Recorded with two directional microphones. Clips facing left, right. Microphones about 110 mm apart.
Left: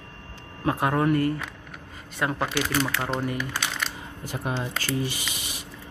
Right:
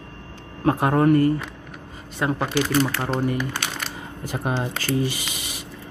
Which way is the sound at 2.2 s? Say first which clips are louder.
Right 3 dB; 25° right (ahead or behind).